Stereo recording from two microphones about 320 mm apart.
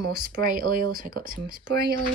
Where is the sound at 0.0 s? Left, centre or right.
Right.